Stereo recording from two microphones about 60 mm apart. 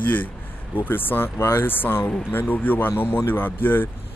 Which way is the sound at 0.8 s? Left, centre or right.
Left.